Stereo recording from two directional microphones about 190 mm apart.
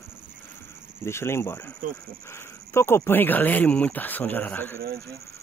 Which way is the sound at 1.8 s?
45° right (ahead or behind).